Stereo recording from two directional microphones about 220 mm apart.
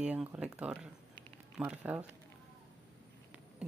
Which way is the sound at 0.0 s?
5° right (ahead or behind).